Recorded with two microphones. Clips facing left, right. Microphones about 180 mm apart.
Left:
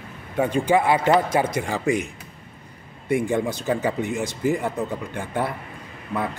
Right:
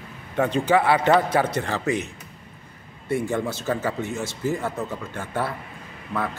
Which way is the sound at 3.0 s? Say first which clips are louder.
Left 3 dB; 15° left (ahead or behind).